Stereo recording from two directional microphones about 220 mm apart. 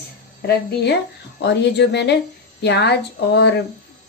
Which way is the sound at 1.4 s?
50° left (ahead or behind).